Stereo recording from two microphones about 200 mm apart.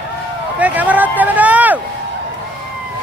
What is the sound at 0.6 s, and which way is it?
Vehicle, 5° right (ahead or behind).